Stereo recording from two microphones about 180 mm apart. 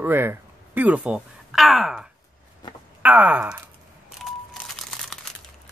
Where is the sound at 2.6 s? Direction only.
25° left (ahead or behind).